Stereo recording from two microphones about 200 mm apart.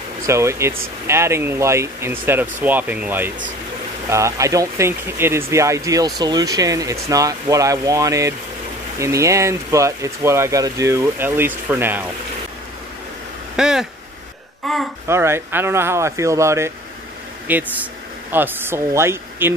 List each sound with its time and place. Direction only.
0.3 s speech: 15° right (ahead or behind)
13.6 s speech: 5° right (ahead or behind)
15.0 s speech: 15° right (ahead or behind)